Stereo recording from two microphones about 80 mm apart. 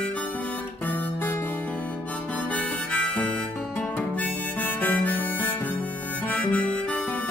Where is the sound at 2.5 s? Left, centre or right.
Centre.